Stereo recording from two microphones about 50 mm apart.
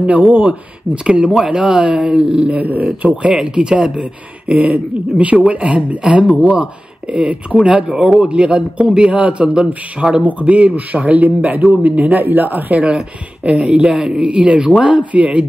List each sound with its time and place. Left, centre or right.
0.0 s a man's voice: right
3.3 s a man's voice: centre